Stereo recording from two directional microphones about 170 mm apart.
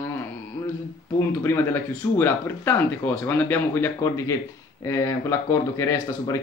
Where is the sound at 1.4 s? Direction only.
10° left (ahead or behind).